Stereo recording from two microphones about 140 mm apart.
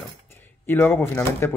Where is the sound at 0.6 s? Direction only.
15° left (ahead or behind).